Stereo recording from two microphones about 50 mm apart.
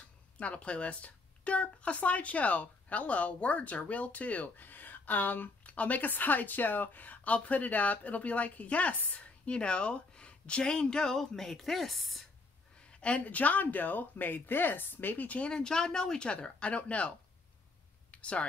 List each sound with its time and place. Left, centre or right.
0.4 s speech: left; by 12.3 s centre
13.0 s speech: left
15.5 s speech: centre
18.1 s speech: left